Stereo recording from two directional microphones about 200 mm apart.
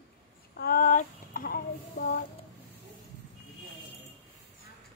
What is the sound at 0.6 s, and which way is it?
Speech, 45° left (ahead or behind).